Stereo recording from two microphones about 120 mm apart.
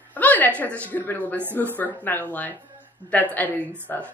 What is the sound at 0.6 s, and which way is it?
Speech, 15° left (ahead or behind).